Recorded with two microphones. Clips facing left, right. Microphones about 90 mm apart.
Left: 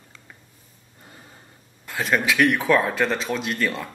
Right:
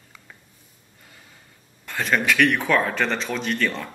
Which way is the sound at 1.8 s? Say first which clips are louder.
Even; 5° left (ahead or behind).